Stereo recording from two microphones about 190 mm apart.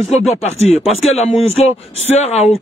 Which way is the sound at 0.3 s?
35° left (ahead or behind).